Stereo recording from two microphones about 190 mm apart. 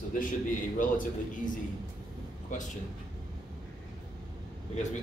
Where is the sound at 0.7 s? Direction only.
45° left (ahead or behind).